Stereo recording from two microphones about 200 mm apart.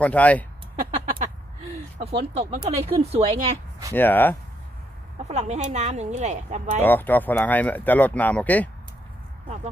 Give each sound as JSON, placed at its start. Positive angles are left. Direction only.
{"t": 0.0, "sound": "speech", "side_deg": 5}
{"t": 2.0, "sound": "speech", "side_deg": -30}
{"t": 3.9, "sound": "speech", "side_deg": 10}
{"t": 5.2, "sound": "speech", "side_deg": -35}
{"t": 6.8, "sound": "speech", "side_deg": 10}